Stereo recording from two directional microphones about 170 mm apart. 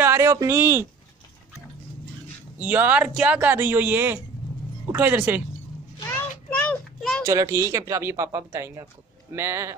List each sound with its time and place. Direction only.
0.0 s speech: 15° right (ahead or behind)
2.6 s speech: 10° right (ahead or behind)
5.9 s a sound: 15° left (ahead or behind)
7.2 s speech: 20° right (ahead or behind)